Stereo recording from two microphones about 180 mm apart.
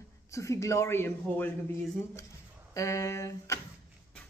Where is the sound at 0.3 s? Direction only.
15° left (ahead or behind).